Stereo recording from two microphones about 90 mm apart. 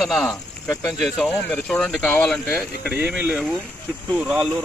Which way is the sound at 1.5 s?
10° left (ahead or behind).